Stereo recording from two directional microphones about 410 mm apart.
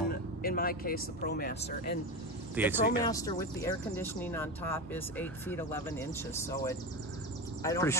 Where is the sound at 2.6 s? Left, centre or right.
Centre.